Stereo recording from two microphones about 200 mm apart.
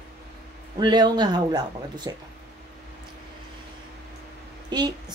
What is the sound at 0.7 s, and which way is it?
Speech, 20° right (ahead or behind).